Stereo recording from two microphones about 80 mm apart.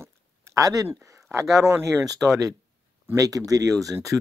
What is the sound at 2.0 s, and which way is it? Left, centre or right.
Speech, right.